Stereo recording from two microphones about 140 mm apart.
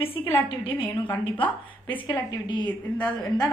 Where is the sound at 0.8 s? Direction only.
10° left (ahead or behind).